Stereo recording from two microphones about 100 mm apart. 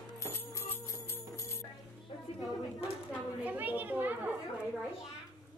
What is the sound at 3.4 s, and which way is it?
Children playing, 15° right (ahead or behind).